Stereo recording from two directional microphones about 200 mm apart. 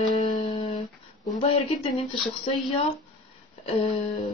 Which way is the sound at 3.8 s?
25° left (ahead or behind).